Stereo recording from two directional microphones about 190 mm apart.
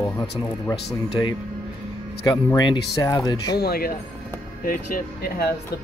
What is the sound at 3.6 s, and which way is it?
Speech, 55° left (ahead or behind).